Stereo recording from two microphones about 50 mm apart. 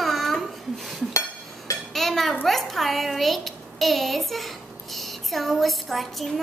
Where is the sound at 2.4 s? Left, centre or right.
Centre.